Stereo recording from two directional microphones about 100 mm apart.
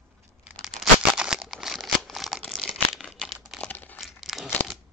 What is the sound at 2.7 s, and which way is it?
Crumpling, 5° right (ahead or behind).